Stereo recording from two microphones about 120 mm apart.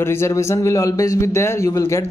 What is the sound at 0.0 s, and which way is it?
Speech, 20° left (ahead or behind).